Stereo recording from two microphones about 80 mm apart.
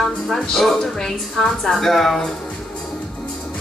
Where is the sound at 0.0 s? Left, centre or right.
Centre.